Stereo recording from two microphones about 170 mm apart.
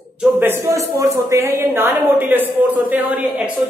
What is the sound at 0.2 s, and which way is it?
A man's voice, 15° right (ahead or behind).